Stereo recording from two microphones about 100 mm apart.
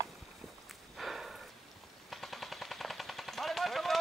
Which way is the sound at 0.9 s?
Centre (ahead or behind).